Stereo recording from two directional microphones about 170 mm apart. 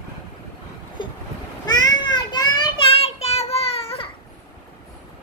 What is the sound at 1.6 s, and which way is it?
Child singing, 25° left (ahead or behind).